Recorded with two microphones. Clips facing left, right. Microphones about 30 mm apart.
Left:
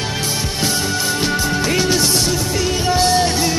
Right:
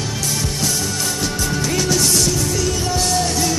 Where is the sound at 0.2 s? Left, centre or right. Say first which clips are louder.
Even; left.